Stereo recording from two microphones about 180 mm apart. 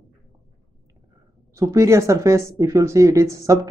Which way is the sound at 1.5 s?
15° right (ahead or behind).